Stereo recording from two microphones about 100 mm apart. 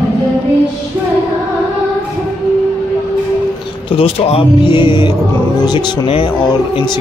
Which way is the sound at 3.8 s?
70° left (ahead or behind).